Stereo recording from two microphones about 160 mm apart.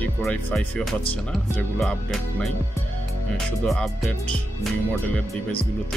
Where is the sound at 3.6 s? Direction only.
Centre (ahead or behind).